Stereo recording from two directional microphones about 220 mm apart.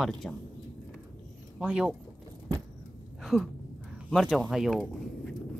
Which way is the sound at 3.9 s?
Centre (ahead or behind).